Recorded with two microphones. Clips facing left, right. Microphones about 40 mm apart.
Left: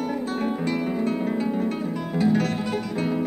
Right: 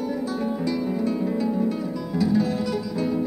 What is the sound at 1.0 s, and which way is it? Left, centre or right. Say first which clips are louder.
Music: even; left.